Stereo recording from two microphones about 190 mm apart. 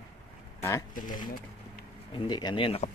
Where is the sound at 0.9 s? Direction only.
45° left (ahead or behind).